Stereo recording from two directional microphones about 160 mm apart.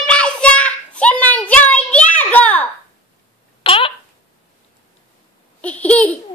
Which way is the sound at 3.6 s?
35° left (ahead or behind).